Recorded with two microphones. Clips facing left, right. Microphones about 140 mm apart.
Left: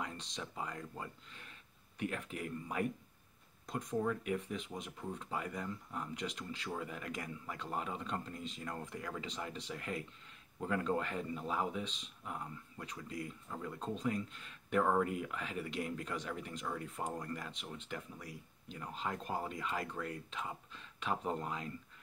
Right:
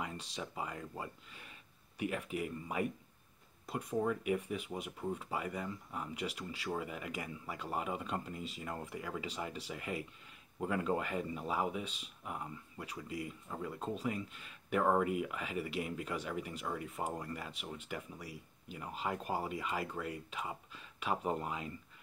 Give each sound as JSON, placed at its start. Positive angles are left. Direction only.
{"t": 0.0, "sound": "speech", "side_deg": -5}